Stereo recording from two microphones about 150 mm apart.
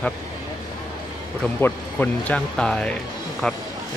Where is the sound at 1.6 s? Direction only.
10° left (ahead or behind).